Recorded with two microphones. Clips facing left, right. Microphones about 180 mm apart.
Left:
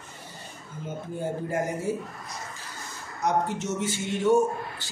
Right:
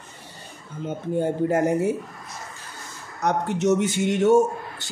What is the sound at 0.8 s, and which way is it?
A man's voice, 70° right (ahead or behind).